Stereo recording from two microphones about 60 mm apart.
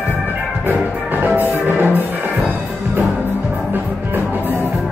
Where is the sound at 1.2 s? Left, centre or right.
Right.